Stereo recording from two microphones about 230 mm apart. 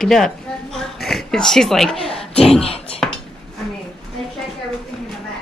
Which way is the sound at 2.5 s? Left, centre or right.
Left.